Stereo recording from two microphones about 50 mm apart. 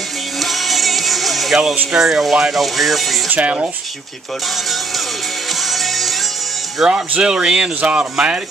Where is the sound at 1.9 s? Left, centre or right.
Centre.